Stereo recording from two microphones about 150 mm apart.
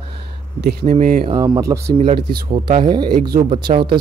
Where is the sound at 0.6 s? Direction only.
90° right.